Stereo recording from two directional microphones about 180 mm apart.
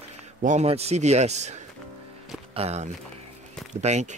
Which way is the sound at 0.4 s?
40° right (ahead or behind).